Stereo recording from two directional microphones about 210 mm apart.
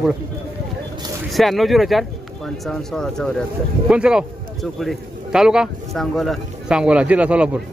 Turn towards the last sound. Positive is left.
turn(degrees=-5)  # may be behind; listen again after turning